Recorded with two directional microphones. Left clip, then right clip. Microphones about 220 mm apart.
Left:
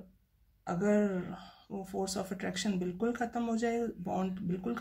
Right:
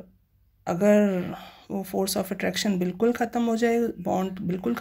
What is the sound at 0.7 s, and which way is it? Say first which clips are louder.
Speech: right 10 dB; 35° right (ahead or behind).